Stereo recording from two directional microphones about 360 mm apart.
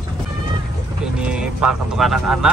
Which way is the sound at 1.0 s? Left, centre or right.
Centre.